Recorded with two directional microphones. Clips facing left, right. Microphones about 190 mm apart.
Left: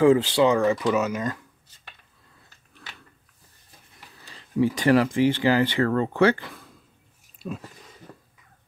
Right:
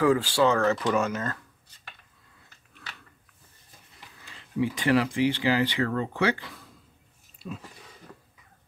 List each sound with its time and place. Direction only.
0.0 s speech: 25° left (ahead or behind)
4.2 s speech: 40° left (ahead or behind)